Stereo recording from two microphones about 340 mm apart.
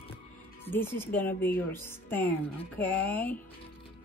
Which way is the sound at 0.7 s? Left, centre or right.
Centre.